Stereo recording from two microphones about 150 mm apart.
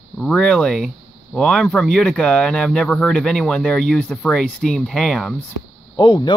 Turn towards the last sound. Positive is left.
turn(degrees=30)  # may be behind; listen again after turning